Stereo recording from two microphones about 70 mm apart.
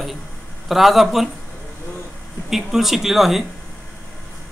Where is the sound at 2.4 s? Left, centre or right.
Centre.